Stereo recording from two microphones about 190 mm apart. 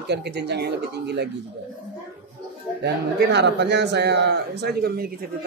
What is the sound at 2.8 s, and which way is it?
A man's voice, 65° right (ahead or behind).